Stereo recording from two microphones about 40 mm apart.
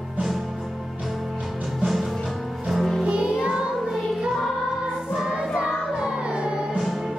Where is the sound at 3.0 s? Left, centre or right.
Right.